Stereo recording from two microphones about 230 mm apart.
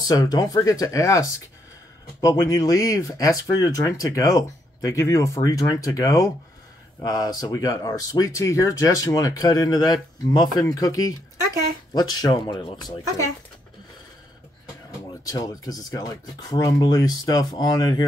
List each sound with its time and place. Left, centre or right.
0.0 s speech: centre
15.2 s speech: centre